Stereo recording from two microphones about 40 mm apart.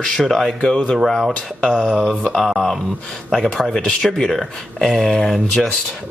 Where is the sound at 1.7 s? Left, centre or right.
Right.